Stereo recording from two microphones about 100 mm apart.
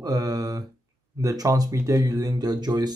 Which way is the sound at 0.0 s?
40° right (ahead or behind).